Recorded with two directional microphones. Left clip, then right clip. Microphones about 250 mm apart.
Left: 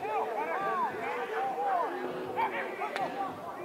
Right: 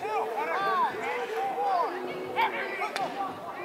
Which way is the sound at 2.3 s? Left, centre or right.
Centre.